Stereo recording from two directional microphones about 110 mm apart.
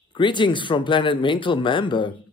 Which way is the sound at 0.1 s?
45° left (ahead or behind).